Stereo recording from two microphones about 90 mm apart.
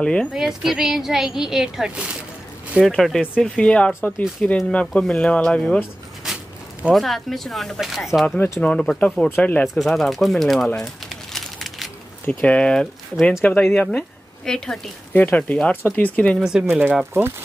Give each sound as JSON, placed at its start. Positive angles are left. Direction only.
{"t": 0.0, "sound": "speech", "side_deg": 10}
{"t": 0.3, "sound": "speech", "side_deg": -5}
{"t": 2.8, "sound": "speech", "side_deg": 5}
{"t": 6.9, "sound": "speech", "side_deg": 0}
{"t": 9.4, "sound": "speech", "side_deg": 15}
{"t": 9.8, "sound": "speech", "side_deg": 0}
{"t": 10.8, "sound": "a sound", "side_deg": 5}
{"t": 12.3, "sound": "speech", "side_deg": 15}
{"t": 13.1, "sound": "speech", "side_deg": -5}
{"t": 13.6, "sound": "speech", "side_deg": 10}
{"t": 15.1, "sound": "speech", "side_deg": 20}
{"t": 16.3, "sound": "speech", "side_deg": -5}
{"t": 16.6, "sound": "speech", "side_deg": -20}